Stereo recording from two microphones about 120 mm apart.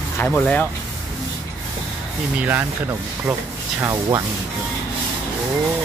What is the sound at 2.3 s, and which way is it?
Speech, 15° right (ahead or behind).